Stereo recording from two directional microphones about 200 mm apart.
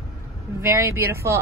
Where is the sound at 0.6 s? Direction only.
15° right (ahead or behind).